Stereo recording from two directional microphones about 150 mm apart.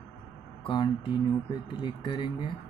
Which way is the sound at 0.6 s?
30° left (ahead or behind).